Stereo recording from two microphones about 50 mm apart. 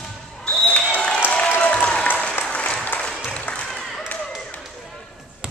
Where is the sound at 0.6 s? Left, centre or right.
Left.